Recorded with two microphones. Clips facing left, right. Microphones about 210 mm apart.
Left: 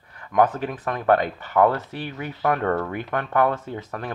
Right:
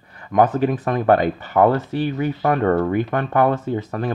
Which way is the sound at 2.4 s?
20° right (ahead or behind).